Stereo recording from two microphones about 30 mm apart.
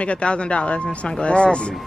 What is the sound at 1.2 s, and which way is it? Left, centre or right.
Speech, left.